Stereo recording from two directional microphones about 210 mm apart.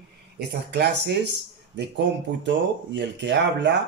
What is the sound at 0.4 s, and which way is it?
Speech, 50° right (ahead or behind).